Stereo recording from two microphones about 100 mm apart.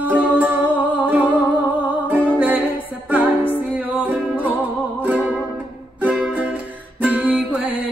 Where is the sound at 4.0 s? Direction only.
15° right (ahead or behind).